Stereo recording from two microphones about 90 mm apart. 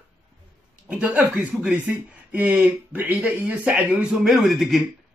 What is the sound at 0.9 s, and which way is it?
Speech, 15° right (ahead or behind).